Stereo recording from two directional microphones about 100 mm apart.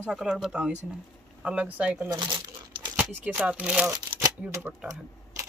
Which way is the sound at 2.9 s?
15° right (ahead or behind).